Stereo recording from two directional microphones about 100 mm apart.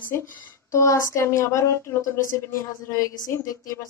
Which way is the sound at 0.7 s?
30° left (ahead or behind).